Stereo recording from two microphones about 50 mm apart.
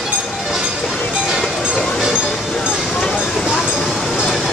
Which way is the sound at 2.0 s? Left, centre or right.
Centre.